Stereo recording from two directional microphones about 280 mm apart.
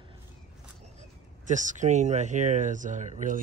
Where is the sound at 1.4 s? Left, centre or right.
Right.